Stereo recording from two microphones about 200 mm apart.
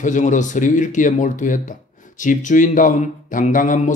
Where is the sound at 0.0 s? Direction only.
40° left (ahead or behind).